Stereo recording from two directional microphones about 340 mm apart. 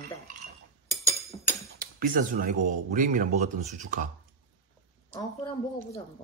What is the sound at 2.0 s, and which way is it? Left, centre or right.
Speech, right.